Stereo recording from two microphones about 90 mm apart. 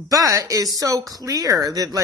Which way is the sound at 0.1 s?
40° right (ahead or behind).